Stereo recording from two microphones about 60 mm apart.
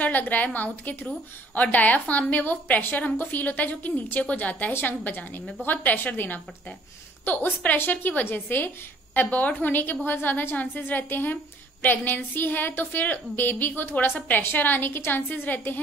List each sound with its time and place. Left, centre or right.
0.0 s a woman's voice: left